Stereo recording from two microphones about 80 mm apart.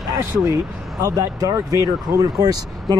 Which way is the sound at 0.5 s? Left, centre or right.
Right.